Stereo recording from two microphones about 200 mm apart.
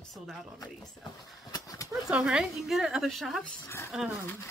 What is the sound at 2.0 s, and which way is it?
Speech, 5° right (ahead or behind).